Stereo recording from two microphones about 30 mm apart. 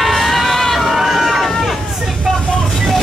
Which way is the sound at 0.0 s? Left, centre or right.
Centre.